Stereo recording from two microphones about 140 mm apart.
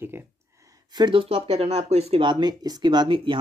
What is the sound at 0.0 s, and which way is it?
Speech, 15° right (ahead or behind).